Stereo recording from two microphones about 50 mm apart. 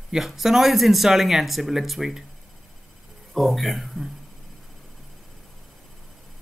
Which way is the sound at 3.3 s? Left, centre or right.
Centre.